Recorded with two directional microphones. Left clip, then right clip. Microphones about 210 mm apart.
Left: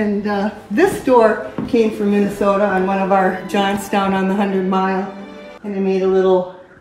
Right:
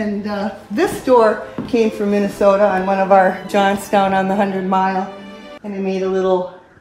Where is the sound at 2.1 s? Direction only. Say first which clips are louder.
Right 2 dB; 30° right (ahead or behind).